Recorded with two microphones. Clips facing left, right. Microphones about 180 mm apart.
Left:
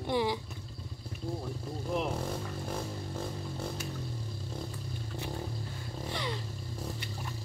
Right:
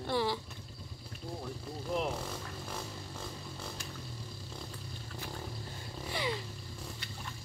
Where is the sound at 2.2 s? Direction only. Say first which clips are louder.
Left 5 dB; 50° left (ahead or behind).